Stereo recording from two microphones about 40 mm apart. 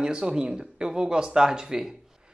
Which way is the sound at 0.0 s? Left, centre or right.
Right.